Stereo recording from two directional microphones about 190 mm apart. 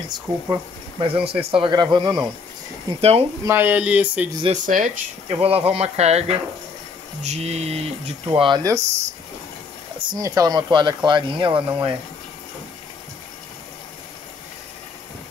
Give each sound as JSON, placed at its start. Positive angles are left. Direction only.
{"t": 0.1, "sound": "speech", "side_deg": -25}
{"t": 3.0, "sound": "speech", "side_deg": -30}
{"t": 3.4, "sound": "speech", "side_deg": -10}
{"t": 4.4, "sound": "speech", "side_deg": -40}
{"t": 5.4, "sound": "speech", "side_deg": -30}
{"t": 7.2, "sound": "speech", "side_deg": -35}
{"t": 8.3, "sound": "speech", "side_deg": -20}